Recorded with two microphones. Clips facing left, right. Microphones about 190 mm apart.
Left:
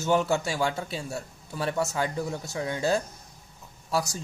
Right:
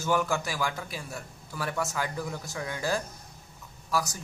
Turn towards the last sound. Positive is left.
turn(degrees=25)  # may be behind; listen again after turning